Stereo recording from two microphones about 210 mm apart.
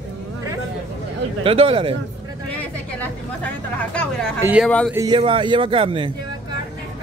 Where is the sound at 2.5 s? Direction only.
5° left (ahead or behind).